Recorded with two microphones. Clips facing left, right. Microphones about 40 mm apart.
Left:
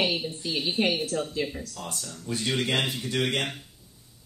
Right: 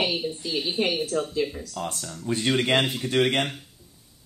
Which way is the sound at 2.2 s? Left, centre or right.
Right.